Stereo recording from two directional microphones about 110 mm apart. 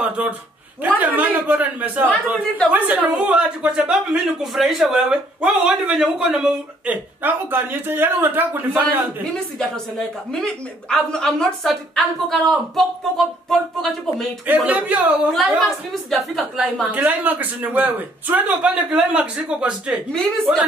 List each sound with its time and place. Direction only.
0.2 s a woman's voice: 10° right (ahead or behind)
9.3 s a woman's voice: 5° left (ahead or behind)
14.4 s a woman's voice: 15° right (ahead or behind)
15.3 s a woman's voice: centre (ahead or behind)
16.9 s a woman's voice: 15° right (ahead or behind)